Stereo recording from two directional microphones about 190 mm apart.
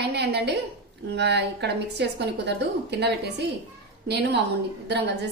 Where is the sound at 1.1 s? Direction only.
65° right (ahead or behind).